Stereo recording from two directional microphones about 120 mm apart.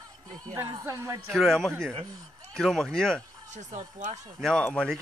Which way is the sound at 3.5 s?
80° right.